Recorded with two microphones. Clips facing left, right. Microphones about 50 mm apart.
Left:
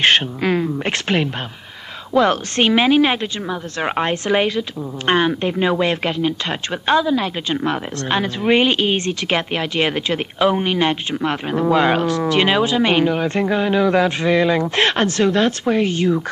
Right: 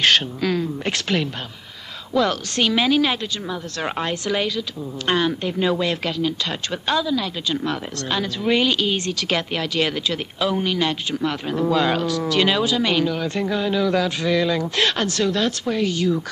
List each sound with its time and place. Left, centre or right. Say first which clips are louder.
0.0 s a woman's voice: left 3 dB; left